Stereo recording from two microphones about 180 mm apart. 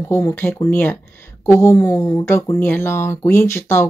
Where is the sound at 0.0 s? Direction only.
15° left (ahead or behind).